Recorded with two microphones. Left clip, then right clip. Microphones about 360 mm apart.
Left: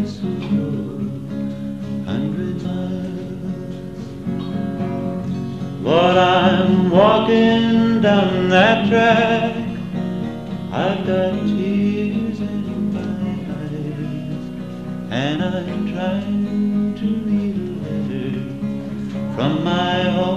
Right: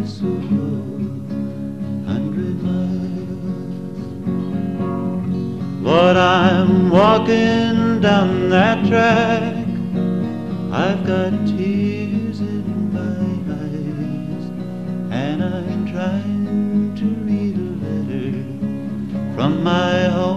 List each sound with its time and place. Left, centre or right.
5.9 s music: right
10.8 s music: right
15.1 s music: centre
19.4 s music: right